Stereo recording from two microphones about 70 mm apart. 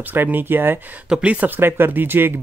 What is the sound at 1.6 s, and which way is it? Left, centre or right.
Speech, right.